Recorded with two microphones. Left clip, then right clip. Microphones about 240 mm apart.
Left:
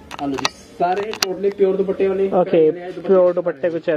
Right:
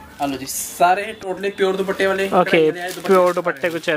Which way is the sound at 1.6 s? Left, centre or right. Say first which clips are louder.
Even; right.